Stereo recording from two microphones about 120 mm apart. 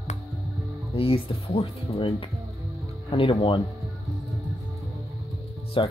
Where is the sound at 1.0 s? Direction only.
50° left (ahead or behind).